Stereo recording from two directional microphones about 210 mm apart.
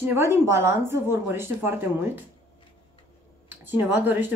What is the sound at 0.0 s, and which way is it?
A woman's voice, 10° right (ahead or behind).